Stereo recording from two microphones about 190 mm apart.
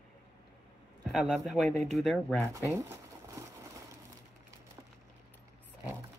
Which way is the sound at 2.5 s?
15° right (ahead or behind).